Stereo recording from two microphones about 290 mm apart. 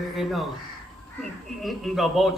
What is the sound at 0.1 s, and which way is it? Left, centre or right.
Speech, centre.